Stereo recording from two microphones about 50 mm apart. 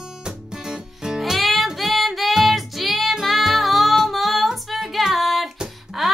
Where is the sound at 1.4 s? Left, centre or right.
Centre.